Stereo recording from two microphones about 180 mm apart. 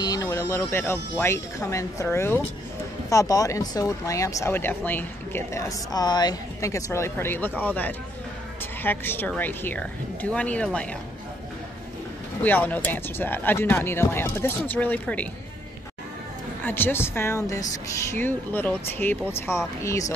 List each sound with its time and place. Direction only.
0.0 s speech: 20° left (ahead or behind)
12.4 s speech: 10° left (ahead or behind)
16.6 s speech: 10° left (ahead or behind)